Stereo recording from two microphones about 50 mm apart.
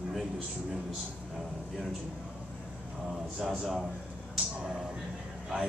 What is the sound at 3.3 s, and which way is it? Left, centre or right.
Speech, centre.